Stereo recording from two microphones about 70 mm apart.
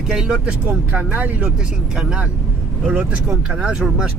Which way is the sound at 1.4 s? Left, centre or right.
Centre.